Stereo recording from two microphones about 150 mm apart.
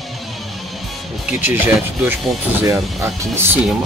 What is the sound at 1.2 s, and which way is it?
Speech, 10° right (ahead or behind).